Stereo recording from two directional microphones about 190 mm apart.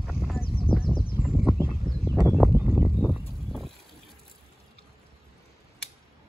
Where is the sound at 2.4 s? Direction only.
10° right (ahead or behind).